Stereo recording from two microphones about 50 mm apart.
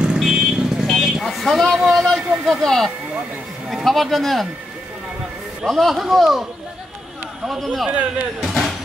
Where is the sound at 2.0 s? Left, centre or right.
Centre.